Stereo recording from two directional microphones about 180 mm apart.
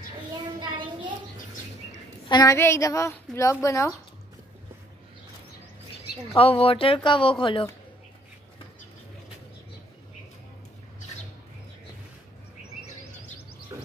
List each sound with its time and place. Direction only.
0.6 s a sound: 25° right (ahead or behind)
2.2 s a woman's voice: 20° left (ahead or behind)
6.3 s speech: 30° left (ahead or behind)